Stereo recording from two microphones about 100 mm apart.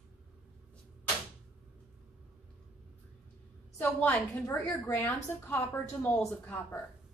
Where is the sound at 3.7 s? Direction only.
15° left (ahead or behind).